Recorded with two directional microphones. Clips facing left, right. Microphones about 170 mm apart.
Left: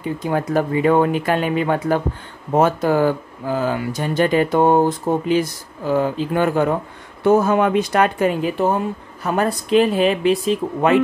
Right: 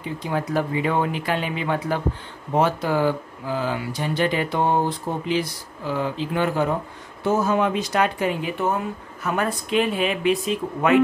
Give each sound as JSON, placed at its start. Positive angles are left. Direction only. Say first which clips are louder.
{"t": 0.3, "sound": "speech", "louder": "left 4 dB", "side_deg": 50}
{"t": 8.5, "sound": "speech", "louder": "left 5 dB", "side_deg": 30}